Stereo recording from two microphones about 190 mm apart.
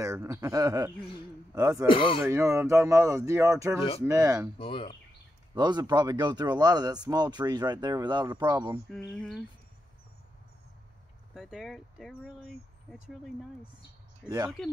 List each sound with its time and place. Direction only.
0.0 s speech: 15° right (ahead or behind)
0.9 s speech: 25° left (ahead or behind)
1.5 s speech: 15° right (ahead or behind)
1.9 s speech: 30° left (ahead or behind)
2.2 s speech: 15° right (ahead or behind)
4.6 s speech: 30° left (ahead or behind)
5.5 s speech: 20° right (ahead or behind)
9.1 s speech: 5° left (ahead or behind)
11.3 s speech: centre (ahead or behind)